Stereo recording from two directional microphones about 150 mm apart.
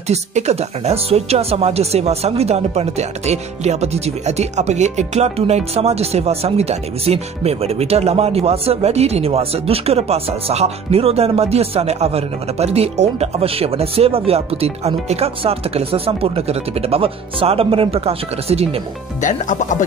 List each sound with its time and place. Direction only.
0.1 s speech: 50° right (ahead or behind)
19.2 s speech: 55° left (ahead or behind)